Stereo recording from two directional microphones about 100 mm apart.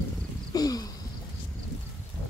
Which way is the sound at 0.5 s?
40° left (ahead or behind).